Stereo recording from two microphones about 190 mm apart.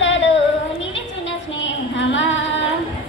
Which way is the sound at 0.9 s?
75° left (ahead or behind).